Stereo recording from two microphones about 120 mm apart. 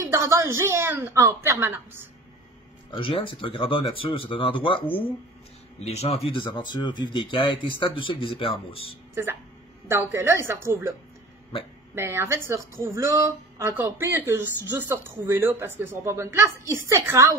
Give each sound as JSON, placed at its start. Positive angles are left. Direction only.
{"t": 0.1, "sound": "speech", "side_deg": -25}
{"t": 2.9, "sound": "speech", "side_deg": 45}
{"t": 5.8, "sound": "speech", "side_deg": 60}
{"t": 6.5, "sound": "speech", "side_deg": 40}
{"t": 9.1, "sound": "speech", "side_deg": -20}
{"t": 11.9, "sound": "speech", "side_deg": -20}